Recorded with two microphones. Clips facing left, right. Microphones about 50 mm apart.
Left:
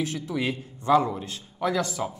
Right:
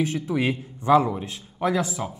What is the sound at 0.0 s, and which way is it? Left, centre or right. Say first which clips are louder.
Speech: right 4 dB; right.